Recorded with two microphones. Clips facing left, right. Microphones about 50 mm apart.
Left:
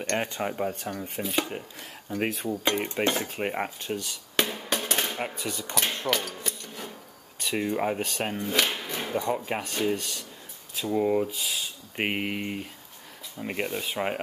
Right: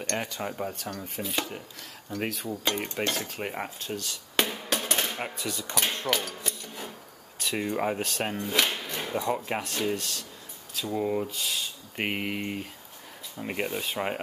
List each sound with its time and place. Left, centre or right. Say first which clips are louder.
0.0 s speech: left 3 dB; left
2.1 s speech: left 3 dB; left
4.4 s music: even; centre
5.3 s speech: left 1 dB; centre
6.0 s a sound: left 1 dB; centre
7.3 s speech: left 1 dB; centre